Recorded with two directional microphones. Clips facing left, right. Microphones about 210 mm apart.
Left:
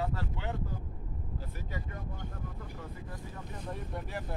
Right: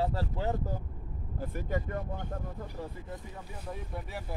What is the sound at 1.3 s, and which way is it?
Speech, 50° right (ahead or behind).